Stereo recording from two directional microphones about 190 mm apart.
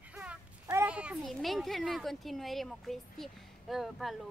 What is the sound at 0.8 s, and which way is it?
A child's voice, 5° right (ahead or behind).